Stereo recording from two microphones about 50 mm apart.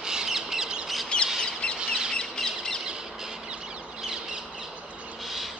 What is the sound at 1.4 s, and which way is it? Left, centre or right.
Bird, centre.